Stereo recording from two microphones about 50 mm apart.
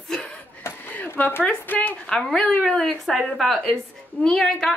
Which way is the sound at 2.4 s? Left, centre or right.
Centre.